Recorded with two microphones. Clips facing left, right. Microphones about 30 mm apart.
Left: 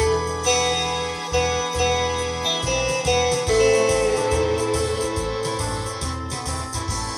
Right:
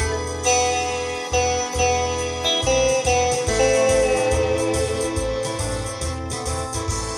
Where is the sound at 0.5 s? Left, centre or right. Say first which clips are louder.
Right 2 dB; left.